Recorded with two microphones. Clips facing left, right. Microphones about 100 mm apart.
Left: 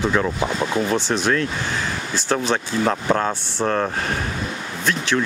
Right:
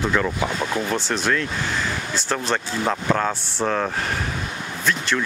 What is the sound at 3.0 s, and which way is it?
Speech, 15° left (ahead or behind).